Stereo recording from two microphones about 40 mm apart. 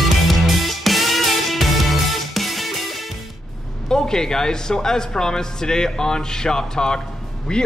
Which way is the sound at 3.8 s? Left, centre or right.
Centre.